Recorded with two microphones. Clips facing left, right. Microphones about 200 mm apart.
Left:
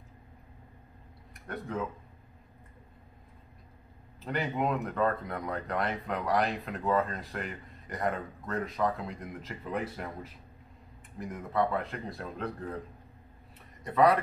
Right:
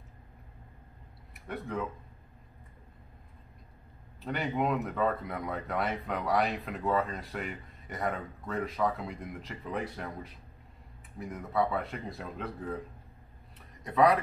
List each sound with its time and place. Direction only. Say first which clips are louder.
1.3 s speech: even; centre (ahead or behind)
4.2 s speech: even; centre (ahead or behind)
13.8 s speech: even; centre (ahead or behind)